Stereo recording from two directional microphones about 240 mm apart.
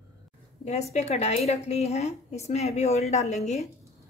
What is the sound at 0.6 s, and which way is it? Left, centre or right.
A woman's voice, left.